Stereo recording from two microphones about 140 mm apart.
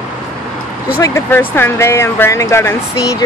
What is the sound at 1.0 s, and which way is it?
Speech, 15° left (ahead or behind).